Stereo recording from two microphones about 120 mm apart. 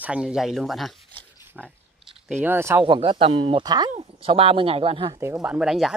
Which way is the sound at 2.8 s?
45° right (ahead or behind).